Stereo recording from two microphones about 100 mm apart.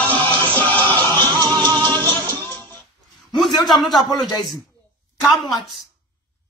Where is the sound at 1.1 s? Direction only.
45° right (ahead or behind).